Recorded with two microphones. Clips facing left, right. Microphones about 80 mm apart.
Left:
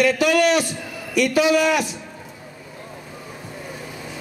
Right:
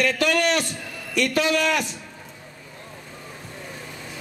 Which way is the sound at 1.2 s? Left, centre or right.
Centre.